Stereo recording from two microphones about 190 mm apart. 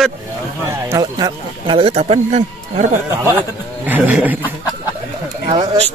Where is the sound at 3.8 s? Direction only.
10° right (ahead or behind).